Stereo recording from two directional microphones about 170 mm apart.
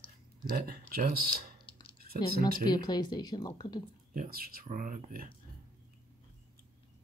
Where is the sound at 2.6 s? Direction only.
25° left (ahead or behind).